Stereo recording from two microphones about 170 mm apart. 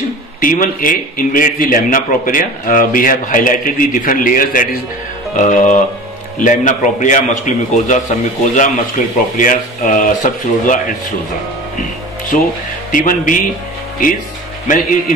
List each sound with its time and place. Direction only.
0.4 s a man's voice: 55° left (ahead or behind)
12.9 s a man's voice: 50° left (ahead or behind)
14.7 s a man's voice: 50° left (ahead or behind)